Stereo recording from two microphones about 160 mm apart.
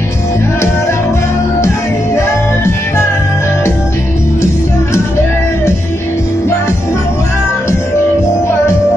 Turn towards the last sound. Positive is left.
turn(degrees=15)  # may be behind; listen again after turning